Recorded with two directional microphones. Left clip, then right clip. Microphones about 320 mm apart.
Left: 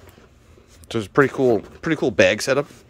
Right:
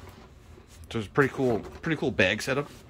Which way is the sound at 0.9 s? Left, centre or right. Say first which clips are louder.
Left 7 dB; centre.